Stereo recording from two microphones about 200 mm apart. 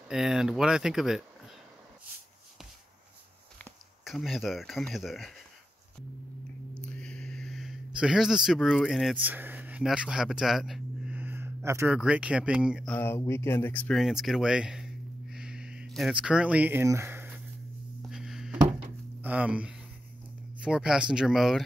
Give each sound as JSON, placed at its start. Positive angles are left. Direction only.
{"t": 0.1, "sound": "speech", "side_deg": -5}
{"t": 4.0, "sound": "speech", "side_deg": 0}
{"t": 6.8, "sound": "speech", "side_deg": 5}
{"t": 12.9, "sound": "speech", "side_deg": 10}
{"t": 18.1, "sound": "a sound", "side_deg": 0}
{"t": 19.2, "sound": "speech", "side_deg": -5}